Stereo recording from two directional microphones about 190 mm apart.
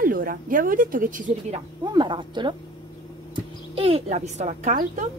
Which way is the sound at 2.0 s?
25° right (ahead or behind).